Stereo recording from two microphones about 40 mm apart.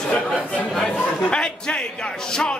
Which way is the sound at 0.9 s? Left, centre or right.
Left.